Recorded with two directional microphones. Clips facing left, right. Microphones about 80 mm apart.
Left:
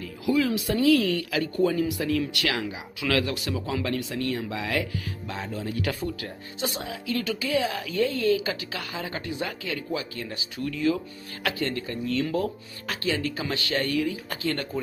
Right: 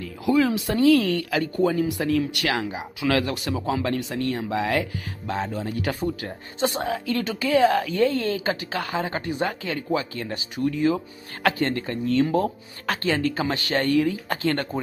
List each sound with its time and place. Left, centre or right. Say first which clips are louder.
0.7 s speech: right 2 dB; right
12.8 s speech: right 5 dB; right